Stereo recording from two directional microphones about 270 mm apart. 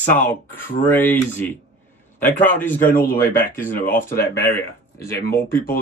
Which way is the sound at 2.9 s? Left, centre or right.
Left.